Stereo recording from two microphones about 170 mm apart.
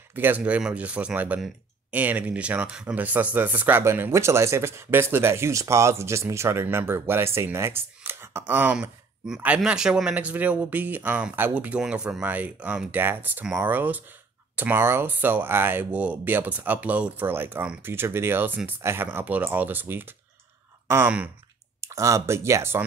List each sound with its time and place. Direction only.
0.1 s speech: 10° right (ahead or behind)